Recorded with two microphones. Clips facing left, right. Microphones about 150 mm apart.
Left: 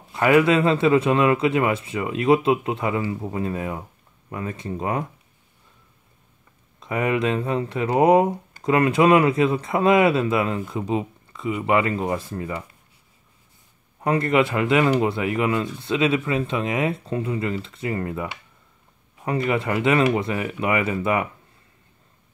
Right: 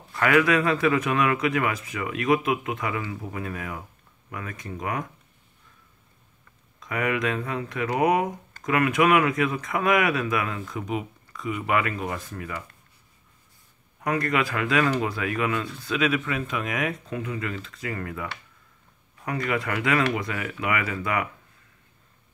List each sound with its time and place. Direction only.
0.1 s speech: 25° left (ahead or behind)
6.8 s speech: 25° left (ahead or behind)
14.0 s speech: 25° left (ahead or behind)